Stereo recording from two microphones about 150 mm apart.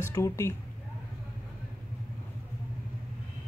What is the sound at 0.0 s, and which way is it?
Speech, 20° left (ahead or behind).